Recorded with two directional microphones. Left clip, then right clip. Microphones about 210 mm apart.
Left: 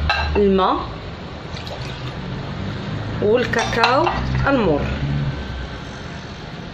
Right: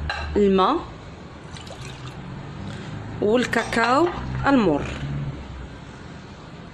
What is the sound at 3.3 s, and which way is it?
Speech, 50° right (ahead or behind).